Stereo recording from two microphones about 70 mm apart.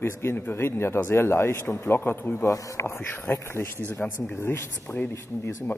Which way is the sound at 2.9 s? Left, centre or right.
Left.